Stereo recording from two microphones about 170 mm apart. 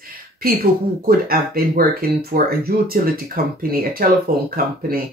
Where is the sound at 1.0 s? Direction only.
60° right (ahead or behind).